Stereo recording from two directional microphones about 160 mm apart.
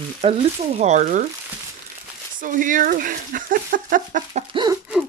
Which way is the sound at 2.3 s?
55° right (ahead or behind).